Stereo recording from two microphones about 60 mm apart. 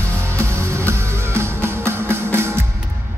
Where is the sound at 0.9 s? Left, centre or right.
Right.